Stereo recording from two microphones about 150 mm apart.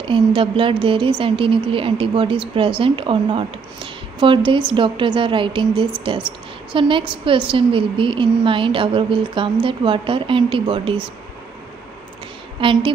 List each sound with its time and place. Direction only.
0.0 s a woman's voice: 35° right (ahead or behind)
12.5 s a woman's voice: 35° right (ahead or behind)